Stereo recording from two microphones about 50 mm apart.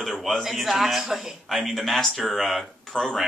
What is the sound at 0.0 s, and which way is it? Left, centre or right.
Speech, centre.